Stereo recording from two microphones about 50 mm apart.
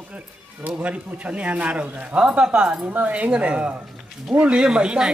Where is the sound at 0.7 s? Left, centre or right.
Right.